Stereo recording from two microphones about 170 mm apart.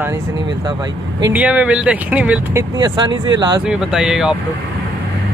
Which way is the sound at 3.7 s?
5° right (ahead or behind).